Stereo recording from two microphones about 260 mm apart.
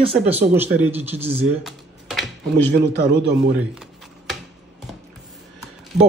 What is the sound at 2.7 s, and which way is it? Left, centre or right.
Speech, right.